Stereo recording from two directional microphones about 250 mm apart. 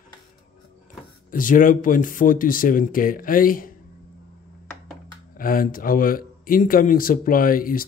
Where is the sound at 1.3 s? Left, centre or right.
Left.